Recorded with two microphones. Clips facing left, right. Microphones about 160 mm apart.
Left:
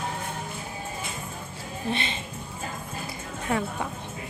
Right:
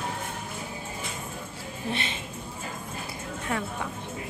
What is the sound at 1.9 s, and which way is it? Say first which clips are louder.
Speech: left 2 dB; 5° right (ahead or behind).